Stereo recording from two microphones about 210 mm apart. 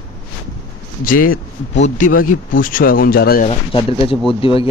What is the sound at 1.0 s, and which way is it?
Speech, 40° left (ahead or behind).